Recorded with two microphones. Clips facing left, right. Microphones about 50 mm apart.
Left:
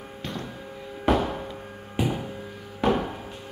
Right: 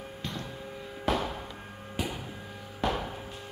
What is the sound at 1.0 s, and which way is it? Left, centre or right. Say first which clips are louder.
Music: left 7 dB; left.